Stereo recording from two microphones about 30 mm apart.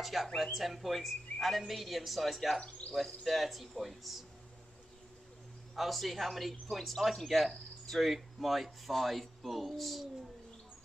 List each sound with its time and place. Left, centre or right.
0.0 s speech: centre
5.8 s speech: centre